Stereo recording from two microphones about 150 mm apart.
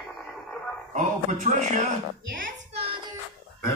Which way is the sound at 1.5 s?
50° right (ahead or behind).